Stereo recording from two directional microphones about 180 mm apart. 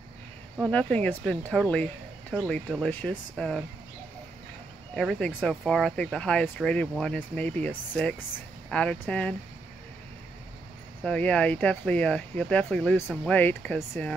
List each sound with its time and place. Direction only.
0.7 s speech: 5° left (ahead or behind)
4.9 s speech: centre (ahead or behind)
11.1 s speech: 5° left (ahead or behind)